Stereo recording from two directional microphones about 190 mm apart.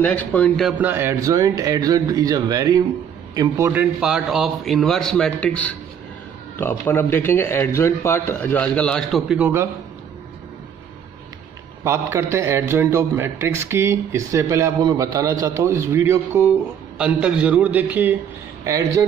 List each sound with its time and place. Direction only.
0.0 s a man's voice: 10° left (ahead or behind); by 9.7 s 10° right (ahead or behind)
11.8 s a man's voice: 15° right (ahead or behind)